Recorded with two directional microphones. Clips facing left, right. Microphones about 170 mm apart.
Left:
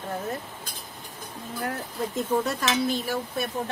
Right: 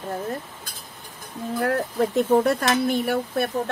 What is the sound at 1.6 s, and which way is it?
Speech, 70° right (ahead or behind).